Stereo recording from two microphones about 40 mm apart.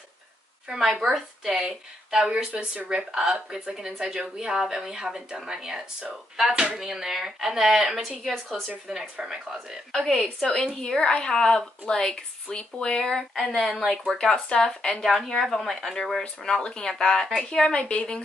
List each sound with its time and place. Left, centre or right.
0.7 s speech: centre
2.5 s speech: right
2.9 s speech: right
3.7 s speech: centre
6.8 s a woman's voice: centre
8.8 s speech: right
9.9 s a woman's voice: centre
14.2 s speech: centre
15.4 s speech: centre; by 18.2 s left